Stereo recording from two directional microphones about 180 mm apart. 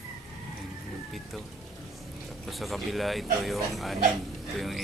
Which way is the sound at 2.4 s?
Centre (ahead or behind).